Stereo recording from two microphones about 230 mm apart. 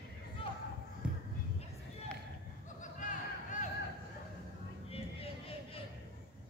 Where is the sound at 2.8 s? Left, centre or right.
Left.